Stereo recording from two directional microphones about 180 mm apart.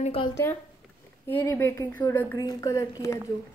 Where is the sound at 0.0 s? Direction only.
30° left (ahead or behind).